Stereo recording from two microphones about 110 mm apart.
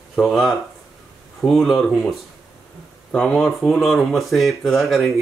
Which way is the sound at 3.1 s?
5° left (ahead or behind).